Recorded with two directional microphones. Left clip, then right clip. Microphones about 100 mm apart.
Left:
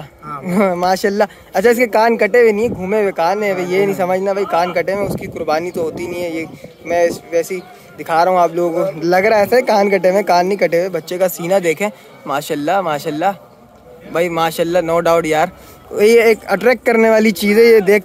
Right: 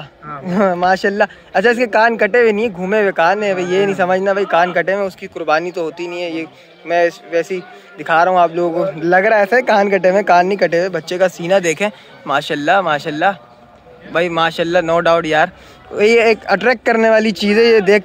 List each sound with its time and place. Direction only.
0.3 s speech: 30° left (ahead or behind)